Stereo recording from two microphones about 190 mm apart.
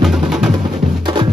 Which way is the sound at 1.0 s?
25° right (ahead or behind).